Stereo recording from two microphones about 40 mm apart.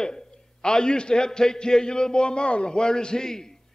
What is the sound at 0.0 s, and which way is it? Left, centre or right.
A man's voice, centre.